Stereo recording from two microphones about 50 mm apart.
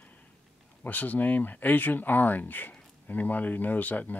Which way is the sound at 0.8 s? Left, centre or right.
Left.